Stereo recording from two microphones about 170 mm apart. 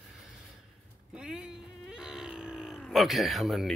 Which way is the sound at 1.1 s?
5° right (ahead or behind).